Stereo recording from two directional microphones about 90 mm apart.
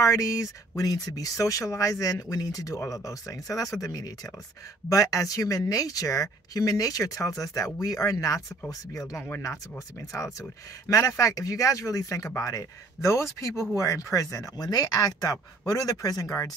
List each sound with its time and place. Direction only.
0.0 s speech: 40° left (ahead or behind)